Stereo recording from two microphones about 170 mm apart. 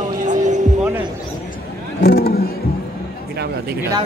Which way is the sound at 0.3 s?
45° right (ahead or behind).